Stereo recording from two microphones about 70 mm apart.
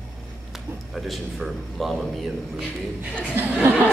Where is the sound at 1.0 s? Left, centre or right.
Centre.